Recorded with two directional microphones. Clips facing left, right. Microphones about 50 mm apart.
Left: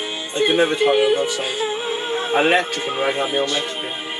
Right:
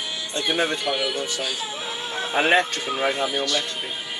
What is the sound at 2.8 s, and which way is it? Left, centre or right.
Speech, left.